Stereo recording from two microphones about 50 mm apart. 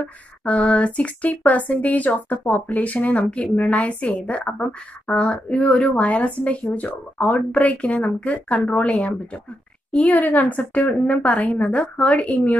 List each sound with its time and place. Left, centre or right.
0.5 s speech: left